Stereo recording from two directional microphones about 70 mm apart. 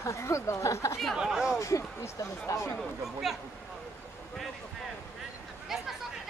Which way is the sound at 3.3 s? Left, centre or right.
Centre.